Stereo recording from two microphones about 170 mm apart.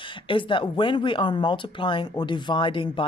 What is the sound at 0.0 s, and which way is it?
Speech, 30° left (ahead or behind).